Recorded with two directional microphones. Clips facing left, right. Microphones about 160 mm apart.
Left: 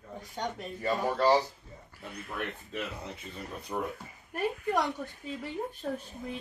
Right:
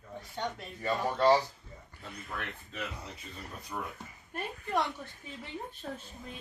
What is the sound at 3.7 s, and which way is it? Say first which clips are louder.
Speech: left 5 dB; 25° left (ahead or behind).